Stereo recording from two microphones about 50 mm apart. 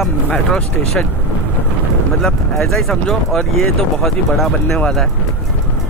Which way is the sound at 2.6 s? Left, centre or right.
Centre.